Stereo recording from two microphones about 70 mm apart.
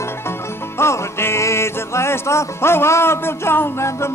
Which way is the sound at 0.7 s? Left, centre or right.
Left.